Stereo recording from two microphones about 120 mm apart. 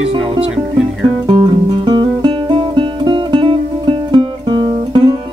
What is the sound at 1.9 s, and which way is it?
Music, 40° right (ahead or behind).